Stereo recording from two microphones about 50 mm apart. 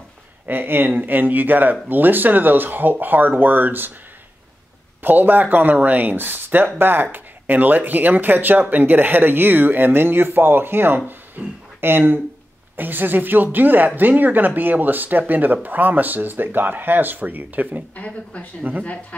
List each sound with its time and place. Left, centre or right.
0.5 s speech: right
5.0 s speech: right
11.1 s a sound: right
12.7 s speech: right
17.9 s speech: left